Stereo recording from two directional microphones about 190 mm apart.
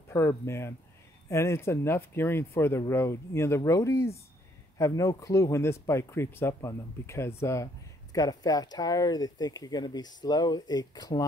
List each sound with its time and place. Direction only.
0.1 s speech: 15° left (ahead or behind)